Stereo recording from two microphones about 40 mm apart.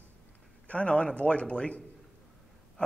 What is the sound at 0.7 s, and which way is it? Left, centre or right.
A man's voice, left.